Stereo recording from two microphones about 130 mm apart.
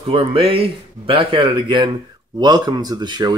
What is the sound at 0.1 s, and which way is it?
Speech, 45° right (ahead or behind).